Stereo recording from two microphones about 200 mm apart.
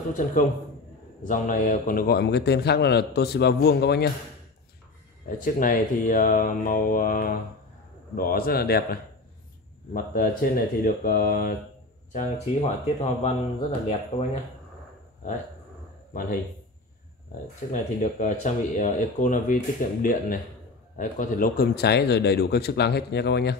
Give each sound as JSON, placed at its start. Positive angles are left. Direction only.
{"t": 0.1, "sound": "a man's voice", "side_deg": 40}
{"t": 5.4, "sound": "a man's voice", "side_deg": 45}
{"t": 9.9, "sound": "a man's voice", "side_deg": 45}
{"t": 16.1, "sound": "speech", "side_deg": 45}
{"t": 18.2, "sound": "speech", "side_deg": 40}